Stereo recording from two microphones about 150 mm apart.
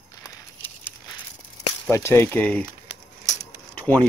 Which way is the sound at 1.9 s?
15° left (ahead or behind).